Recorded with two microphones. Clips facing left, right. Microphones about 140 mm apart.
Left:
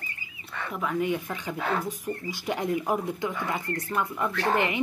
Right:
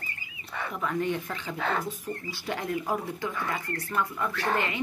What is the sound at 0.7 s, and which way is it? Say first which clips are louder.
Speech: left 2 dB; 5° left (ahead or behind).